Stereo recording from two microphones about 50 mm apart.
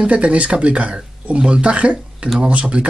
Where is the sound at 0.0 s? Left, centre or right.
Right.